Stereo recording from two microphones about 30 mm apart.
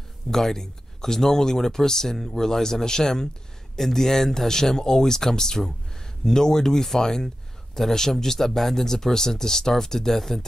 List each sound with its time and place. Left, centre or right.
0.3 s speech: centre